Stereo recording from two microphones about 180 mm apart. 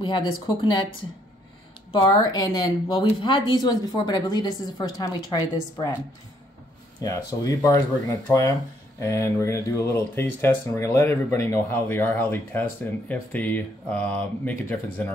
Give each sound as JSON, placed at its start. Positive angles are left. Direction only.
{"t": 0.0, "sound": "speech", "side_deg": 25}
{"t": 2.0, "sound": "speech", "side_deg": 20}
{"t": 7.0, "sound": "speech", "side_deg": 20}